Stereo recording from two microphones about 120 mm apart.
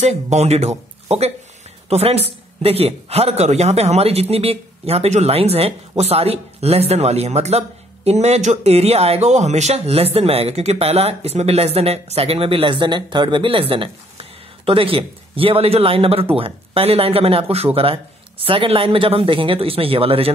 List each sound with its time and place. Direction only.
0.0 s speech: 70° right (ahead or behind); by 20.3 s 50° right (ahead or behind)